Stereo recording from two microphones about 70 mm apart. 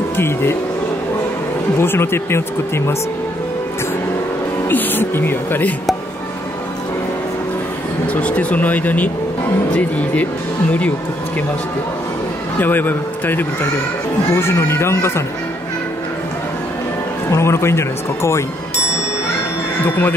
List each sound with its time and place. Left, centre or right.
0.2 s speech: left
1.8 s speech: left
4.6 s speech: left
8.1 s speech: centre
12.5 s speech: left
17.3 s speech: left
19.8 s speech: left